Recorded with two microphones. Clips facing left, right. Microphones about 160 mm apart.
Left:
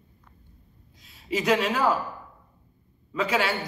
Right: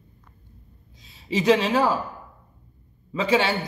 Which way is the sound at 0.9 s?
25° right (ahead or behind).